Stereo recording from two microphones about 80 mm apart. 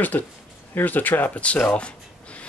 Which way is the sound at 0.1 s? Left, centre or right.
Left.